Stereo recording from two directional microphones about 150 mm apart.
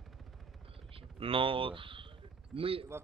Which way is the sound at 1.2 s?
35° right (ahead or behind).